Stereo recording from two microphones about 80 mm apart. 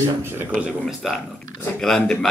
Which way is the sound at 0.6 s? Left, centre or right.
Centre.